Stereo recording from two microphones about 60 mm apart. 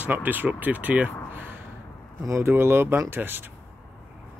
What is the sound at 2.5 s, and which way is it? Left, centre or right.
Speech, right.